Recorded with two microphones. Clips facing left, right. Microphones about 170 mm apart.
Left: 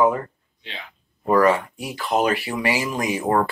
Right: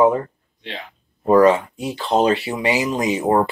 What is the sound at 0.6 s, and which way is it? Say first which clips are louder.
Speech: right 6 dB; 50° right (ahead or behind).